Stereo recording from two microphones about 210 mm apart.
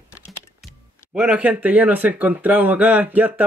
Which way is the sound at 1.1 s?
5° right (ahead or behind).